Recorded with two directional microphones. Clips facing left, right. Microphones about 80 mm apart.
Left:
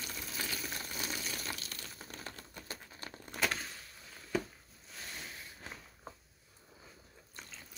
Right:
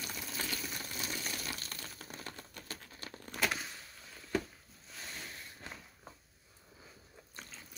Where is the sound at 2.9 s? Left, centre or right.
Left.